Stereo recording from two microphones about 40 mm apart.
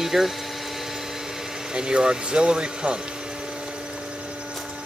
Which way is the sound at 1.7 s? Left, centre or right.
Right.